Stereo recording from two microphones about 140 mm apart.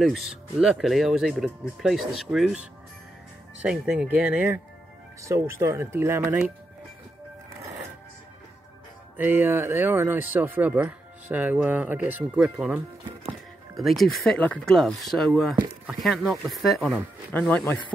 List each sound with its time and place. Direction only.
0.0 s speech: centre (ahead or behind)
3.6 s speech: 5° right (ahead or behind)
9.1 s speech: 15° right (ahead or behind)
17.3 s speech: 10° left (ahead or behind)